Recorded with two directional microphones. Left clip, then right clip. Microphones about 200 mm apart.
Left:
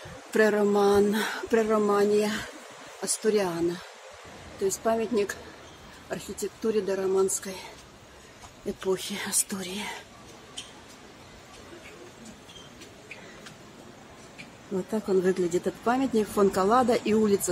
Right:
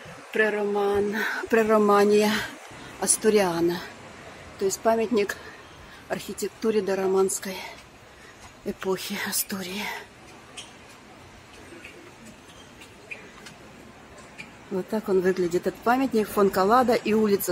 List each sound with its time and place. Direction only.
0.3 s a sound: 35° left (ahead or behind)
1.1 s speech: 15° left (ahead or behind)
1.5 s speech: 5° right (ahead or behind)
1.9 s a woman's voice: 20° right (ahead or behind)
4.8 s speech: 15° right (ahead or behind)
8.7 s speech: 5° right (ahead or behind)
14.9 s speech: centre (ahead or behind)